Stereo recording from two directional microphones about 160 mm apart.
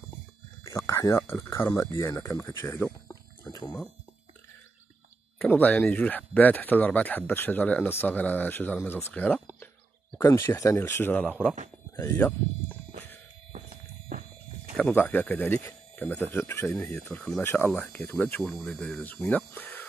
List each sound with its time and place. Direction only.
0.7 s speech: 20° left (ahead or behind)
3.5 s a sound: 20° left (ahead or behind)
5.4 s speech: 10° left (ahead or behind)
14.8 s speech: 10° left (ahead or behind)